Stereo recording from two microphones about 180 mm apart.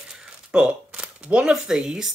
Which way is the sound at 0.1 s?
5° right (ahead or behind).